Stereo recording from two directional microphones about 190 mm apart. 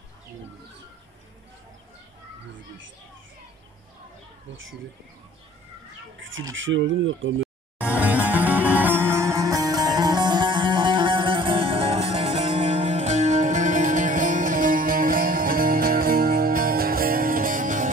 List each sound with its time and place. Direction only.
6.1 s speech: 90° right
7.8 s music: 10° right (ahead or behind); by 17.9 s 45° right (ahead or behind)